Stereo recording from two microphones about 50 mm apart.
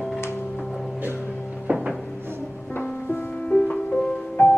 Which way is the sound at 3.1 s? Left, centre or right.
Left.